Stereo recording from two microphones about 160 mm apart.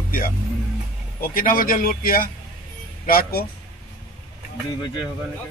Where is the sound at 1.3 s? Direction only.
65° left (ahead or behind).